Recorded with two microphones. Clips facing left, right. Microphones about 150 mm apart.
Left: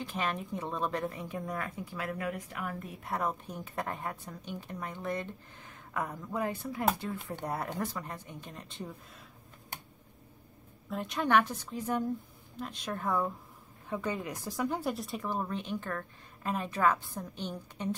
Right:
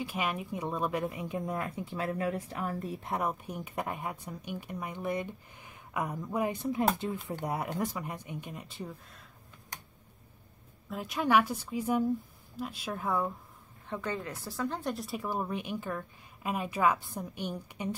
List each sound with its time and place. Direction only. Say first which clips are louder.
0.0 s a woman's voice: right 1 dB; 10° right (ahead or behind); by 3.1 s 35° right (ahead or behind)
3.1 s a woman's voice: even; 15° right (ahead or behind)
10.9 s a woman's voice: right 1 dB; 5° right (ahead or behind)
13.8 s a woman's voice: left 1 dB; 10° left (ahead or behind); by 17.8 s 10° right (ahead or behind)